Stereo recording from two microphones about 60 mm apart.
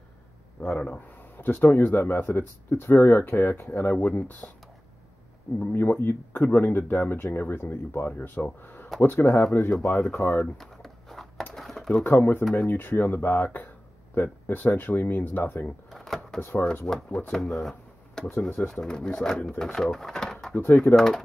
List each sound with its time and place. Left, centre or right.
0.7 s speech: left
3.9 s speech: left
5.7 s speech: left
9.8 s speech: centre
10.1 s speech: left
10.6 s a sound: centre
11.5 s typing: centre
12.0 s speech: left
15.9 s drawer open or close: centre
16.3 s speech: left
16.8 s speech: centre